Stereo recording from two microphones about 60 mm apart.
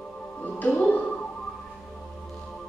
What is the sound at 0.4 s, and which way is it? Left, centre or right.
Music, left.